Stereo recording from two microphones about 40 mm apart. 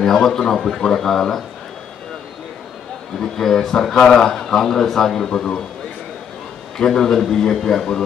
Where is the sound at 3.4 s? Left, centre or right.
Centre.